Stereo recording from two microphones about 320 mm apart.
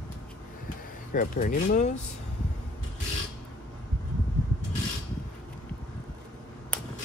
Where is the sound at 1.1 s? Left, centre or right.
Left.